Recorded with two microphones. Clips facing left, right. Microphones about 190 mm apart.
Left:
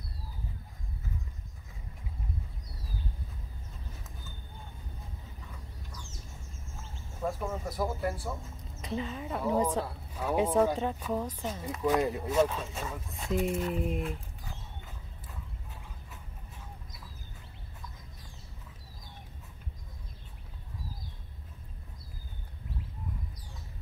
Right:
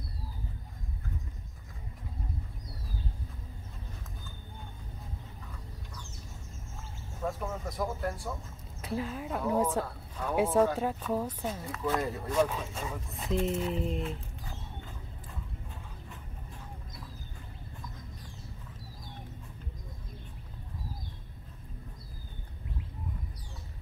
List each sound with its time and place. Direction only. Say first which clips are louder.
7.2 s speech: left 1 dB; 5° left (ahead or behind)
9.8 s a sound: left 2 dB; 10° left (ahead or behind)
10.3 s speech: even; 5° right (ahead or behind)
11.6 s speech: left 5 dB; 15° left (ahead or behind)
12.4 s speech: left 1 dB; 10° right (ahead or behind)
12.9 s speech: even; 5° left (ahead or behind)